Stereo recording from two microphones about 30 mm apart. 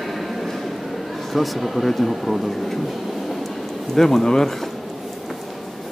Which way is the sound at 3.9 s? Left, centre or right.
Centre.